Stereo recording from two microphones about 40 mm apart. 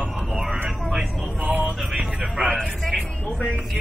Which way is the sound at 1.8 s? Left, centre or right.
Centre.